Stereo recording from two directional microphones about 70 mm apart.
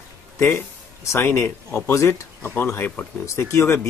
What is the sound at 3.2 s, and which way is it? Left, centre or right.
Speech, left.